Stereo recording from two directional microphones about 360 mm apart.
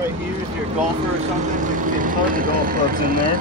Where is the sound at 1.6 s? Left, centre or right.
Right.